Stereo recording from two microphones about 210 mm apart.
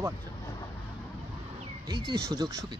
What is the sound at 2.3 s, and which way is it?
Speech, 20° right (ahead or behind).